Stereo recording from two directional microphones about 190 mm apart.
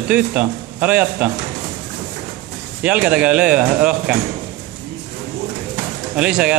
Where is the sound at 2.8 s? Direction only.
5° right (ahead or behind).